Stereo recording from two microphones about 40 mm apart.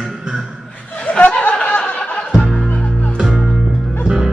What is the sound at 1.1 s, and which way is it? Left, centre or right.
Laughter, left.